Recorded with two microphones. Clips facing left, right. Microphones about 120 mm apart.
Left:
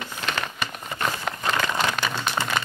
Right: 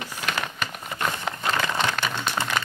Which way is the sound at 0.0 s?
10° right (ahead or behind).